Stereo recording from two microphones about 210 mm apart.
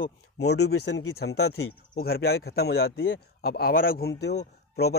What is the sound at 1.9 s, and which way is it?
Speech, 45° left (ahead or behind).